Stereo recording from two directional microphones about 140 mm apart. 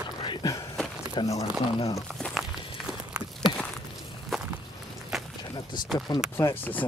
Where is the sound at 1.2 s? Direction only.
35° left (ahead or behind).